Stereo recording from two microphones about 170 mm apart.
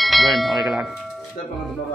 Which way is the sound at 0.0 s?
Centre (ahead or behind).